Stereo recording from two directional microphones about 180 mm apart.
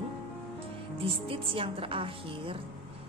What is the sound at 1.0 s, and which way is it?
Speech, 30° right (ahead or behind).